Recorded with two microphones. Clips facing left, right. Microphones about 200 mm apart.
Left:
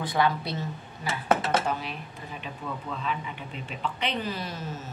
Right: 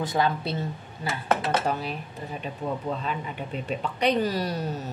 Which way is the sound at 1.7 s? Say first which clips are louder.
Right 3 dB; 40° right (ahead or behind).